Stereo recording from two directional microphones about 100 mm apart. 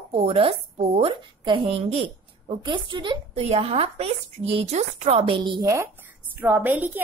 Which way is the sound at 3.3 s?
85° right.